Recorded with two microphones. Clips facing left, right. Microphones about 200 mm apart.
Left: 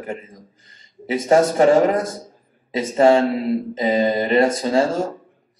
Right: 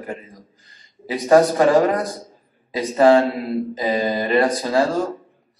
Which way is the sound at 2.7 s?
25° left (ahead or behind).